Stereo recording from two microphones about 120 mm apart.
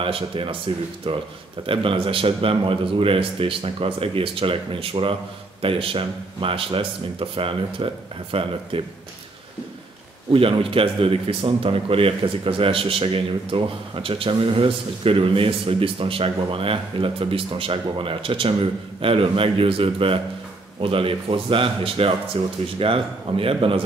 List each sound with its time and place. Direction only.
0.0 s a man's voice: 50° right (ahead or behind)
10.3 s a man's voice: 50° right (ahead or behind)